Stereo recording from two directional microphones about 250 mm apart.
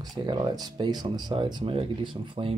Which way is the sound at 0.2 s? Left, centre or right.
Centre.